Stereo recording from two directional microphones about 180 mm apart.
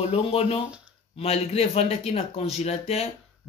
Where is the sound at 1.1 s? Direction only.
35° left (ahead or behind).